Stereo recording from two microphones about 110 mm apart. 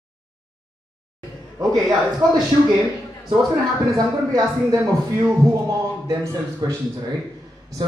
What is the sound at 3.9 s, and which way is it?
Speech, 35° right (ahead or behind).